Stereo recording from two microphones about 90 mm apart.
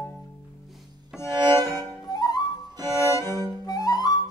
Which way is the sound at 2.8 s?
45° right (ahead or behind).